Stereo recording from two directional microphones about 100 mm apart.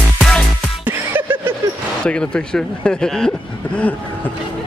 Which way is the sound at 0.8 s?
20° right (ahead or behind).